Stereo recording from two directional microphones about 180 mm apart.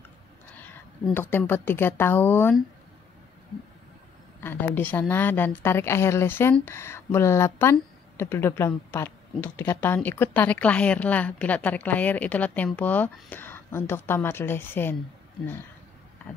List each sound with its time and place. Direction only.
1.1 s a woman's voice: 10° left (ahead or behind)
4.4 s a woman's voice: 10° left (ahead or behind)
16.3 s a sound: 10° left (ahead or behind)